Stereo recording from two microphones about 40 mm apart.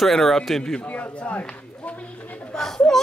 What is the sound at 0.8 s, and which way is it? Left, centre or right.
Speech, left.